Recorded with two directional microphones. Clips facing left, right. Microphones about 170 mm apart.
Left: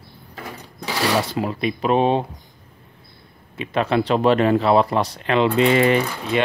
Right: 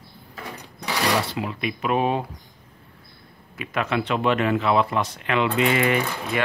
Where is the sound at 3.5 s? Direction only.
30° left (ahead or behind).